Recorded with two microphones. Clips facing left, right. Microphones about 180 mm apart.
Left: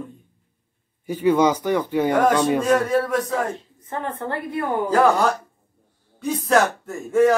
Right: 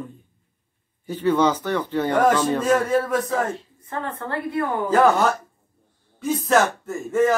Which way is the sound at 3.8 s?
20° left (ahead or behind).